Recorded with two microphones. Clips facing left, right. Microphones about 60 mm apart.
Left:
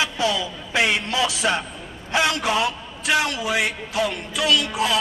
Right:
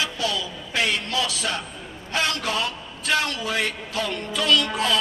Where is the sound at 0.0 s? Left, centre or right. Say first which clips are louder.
Left 4 dB; centre.